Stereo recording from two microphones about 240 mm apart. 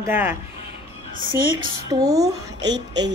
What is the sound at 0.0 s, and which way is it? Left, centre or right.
Speech, centre.